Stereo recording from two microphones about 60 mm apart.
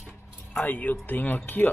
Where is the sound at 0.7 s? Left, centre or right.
Left.